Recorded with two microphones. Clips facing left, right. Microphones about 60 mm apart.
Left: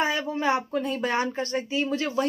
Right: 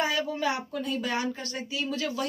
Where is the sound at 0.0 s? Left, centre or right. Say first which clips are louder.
Left 2 dB; left.